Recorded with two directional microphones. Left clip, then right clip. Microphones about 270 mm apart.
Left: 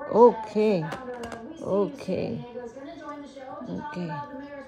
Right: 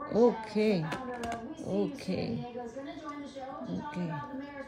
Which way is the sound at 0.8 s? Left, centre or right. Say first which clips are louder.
Left 2 dB; centre.